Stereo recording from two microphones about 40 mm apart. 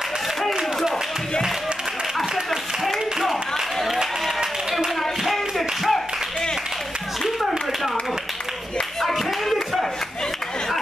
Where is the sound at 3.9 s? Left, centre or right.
Centre.